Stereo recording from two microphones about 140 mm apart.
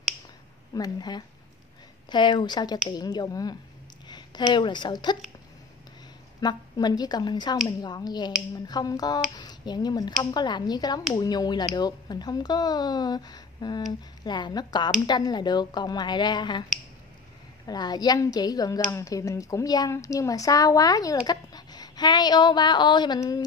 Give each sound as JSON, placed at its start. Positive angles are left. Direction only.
{"t": 0.7, "sound": "a woman's voice", "side_deg": 30}
{"t": 6.4, "sound": "a woman's voice", "side_deg": 30}
{"t": 17.6, "sound": "a woman's voice", "side_deg": 30}